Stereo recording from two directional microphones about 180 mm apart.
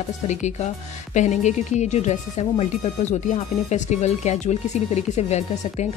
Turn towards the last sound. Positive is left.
turn(degrees=40)  # may be behind; listen again after turning